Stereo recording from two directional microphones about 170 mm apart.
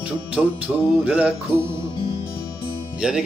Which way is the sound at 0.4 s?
10° right (ahead or behind).